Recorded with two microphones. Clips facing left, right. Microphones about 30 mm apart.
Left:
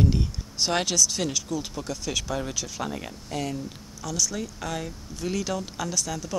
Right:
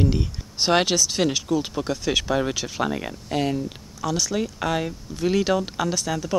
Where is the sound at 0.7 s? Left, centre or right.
Right.